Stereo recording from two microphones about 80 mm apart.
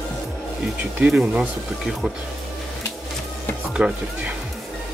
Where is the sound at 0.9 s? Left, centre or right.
Centre.